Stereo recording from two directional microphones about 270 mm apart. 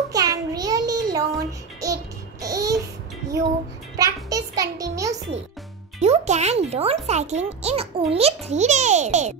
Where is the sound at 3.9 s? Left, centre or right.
Centre.